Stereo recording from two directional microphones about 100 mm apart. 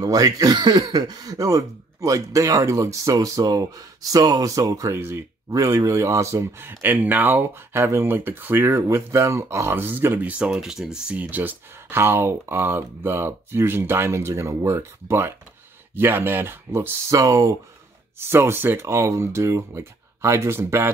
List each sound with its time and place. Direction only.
0.0 s speech: 35° right (ahead or behind)
4.9 s speech: 25° right (ahead or behind)
5.5 s speech: 35° right (ahead or behind)
10.4 s speech: 5° right (ahead or behind); by 17.6 s 35° right (ahead or behind)
18.2 s speech: 25° right (ahead or behind)